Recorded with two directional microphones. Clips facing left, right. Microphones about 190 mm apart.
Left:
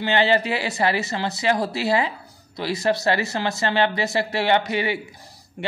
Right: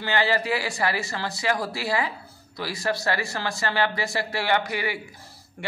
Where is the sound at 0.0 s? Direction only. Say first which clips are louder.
Left 5 dB; 25° left (ahead or behind).